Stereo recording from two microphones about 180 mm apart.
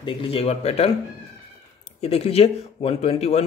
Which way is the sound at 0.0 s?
30° left (ahead or behind).